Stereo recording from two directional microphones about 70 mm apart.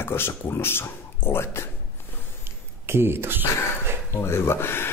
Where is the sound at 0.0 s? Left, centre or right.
Left.